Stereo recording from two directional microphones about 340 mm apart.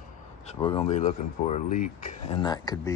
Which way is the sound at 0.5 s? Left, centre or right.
Centre.